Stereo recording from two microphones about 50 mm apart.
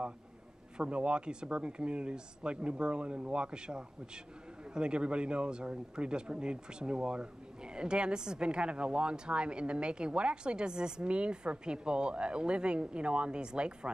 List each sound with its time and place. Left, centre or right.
0.7 s speech: right